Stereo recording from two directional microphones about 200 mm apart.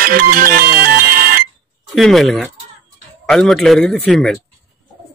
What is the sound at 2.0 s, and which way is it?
A man's voice, centre (ahead or behind).